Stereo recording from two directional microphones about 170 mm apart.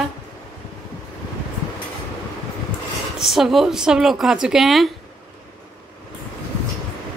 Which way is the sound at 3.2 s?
Centre (ahead or behind).